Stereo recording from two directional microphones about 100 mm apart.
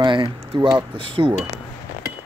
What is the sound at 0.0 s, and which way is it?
Speech, 45° right (ahead or behind).